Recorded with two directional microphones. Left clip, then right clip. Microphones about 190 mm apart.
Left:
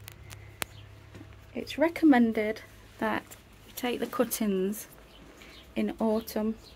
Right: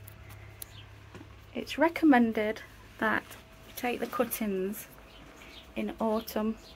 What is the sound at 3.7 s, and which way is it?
Speech, 30° left (ahead or behind).